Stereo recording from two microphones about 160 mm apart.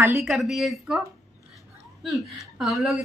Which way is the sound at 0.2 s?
Centre (ahead or behind).